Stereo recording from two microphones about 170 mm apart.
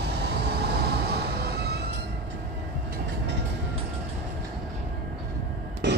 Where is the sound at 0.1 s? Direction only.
80° right.